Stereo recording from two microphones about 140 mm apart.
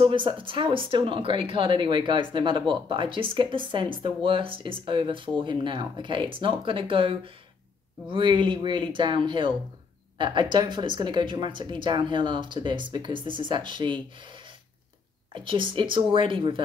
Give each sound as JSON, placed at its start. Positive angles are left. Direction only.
{"t": 0.0, "sound": "speech", "side_deg": -40}
{"t": 15.3, "sound": "speech", "side_deg": -35}